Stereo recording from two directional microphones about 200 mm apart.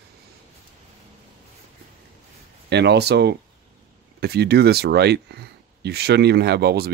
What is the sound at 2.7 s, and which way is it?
Speech, 55° right (ahead or behind).